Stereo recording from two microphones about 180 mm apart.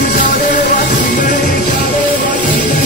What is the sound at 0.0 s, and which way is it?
Music, 50° left (ahead or behind).